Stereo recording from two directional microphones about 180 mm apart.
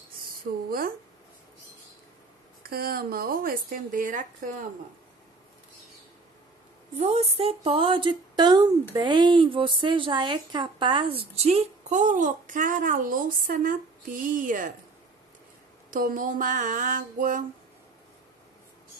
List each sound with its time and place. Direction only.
0.7 s a woman's voice: 55° right (ahead or behind)
2.7 s a woman's voice: 55° right (ahead or behind)
7.0 s a woman's voice: 35° right (ahead or behind)
15.9 s a sound: 50° right (ahead or behind)